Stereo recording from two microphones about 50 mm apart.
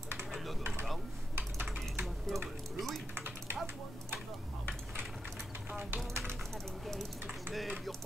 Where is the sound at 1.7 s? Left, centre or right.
Centre.